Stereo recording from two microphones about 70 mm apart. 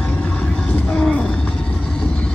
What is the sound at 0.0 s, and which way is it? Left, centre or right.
Vehicle, centre.